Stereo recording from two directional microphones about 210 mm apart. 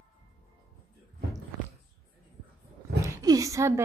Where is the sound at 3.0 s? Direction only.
15° right (ahead or behind).